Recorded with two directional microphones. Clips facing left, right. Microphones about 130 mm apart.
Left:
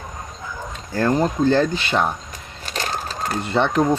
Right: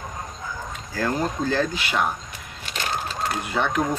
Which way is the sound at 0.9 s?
30° left (ahead or behind).